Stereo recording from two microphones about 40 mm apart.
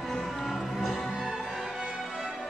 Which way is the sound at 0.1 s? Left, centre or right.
Centre.